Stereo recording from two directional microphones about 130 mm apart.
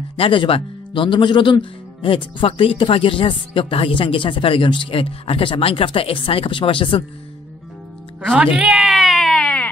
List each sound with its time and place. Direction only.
0.2 s speech: 45° left (ahead or behind)
8.5 s baby cry: 5° right (ahead or behind)